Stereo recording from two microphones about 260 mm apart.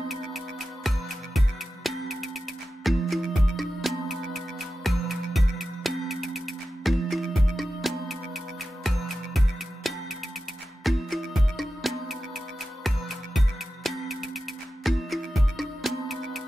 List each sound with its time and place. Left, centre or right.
0.8 s music: centre
10.8 s music: centre